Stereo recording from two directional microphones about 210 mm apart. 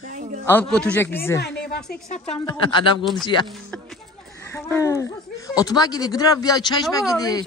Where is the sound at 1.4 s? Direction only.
50° left (ahead or behind).